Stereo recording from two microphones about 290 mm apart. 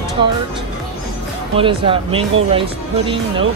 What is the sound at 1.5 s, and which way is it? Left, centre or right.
Speech, centre.